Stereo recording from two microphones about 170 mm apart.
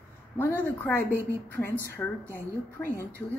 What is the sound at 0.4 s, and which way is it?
A woman's voice, 15° left (ahead or behind).